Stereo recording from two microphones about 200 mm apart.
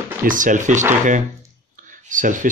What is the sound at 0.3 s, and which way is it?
Speech, 40° right (ahead or behind).